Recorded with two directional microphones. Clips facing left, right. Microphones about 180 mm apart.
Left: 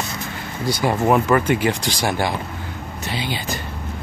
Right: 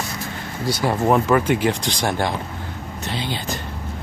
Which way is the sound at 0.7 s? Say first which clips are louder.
Left 1 dB; 15° left (ahead or behind).